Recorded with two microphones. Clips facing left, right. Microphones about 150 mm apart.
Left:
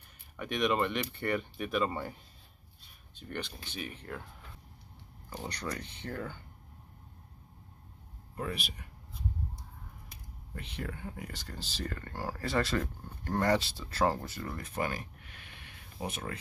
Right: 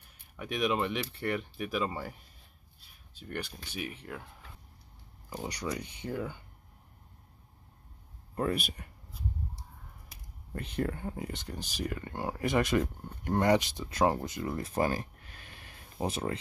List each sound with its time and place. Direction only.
0.4 s speech: 5° right (ahead or behind)
2.8 s a sound: 5° right (ahead or behind)
4.1 s speech: 5° right (ahead or behind)
5.3 s speech: 10° right (ahead or behind)
8.4 s speech: 50° right (ahead or behind)
10.5 s speech: 45° right (ahead or behind)
11.1 s speech: 20° right (ahead or behind)
14.6 s a sound: 35° right (ahead or behind)